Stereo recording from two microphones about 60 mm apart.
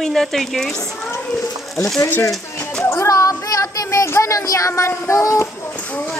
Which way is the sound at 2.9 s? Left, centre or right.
Left.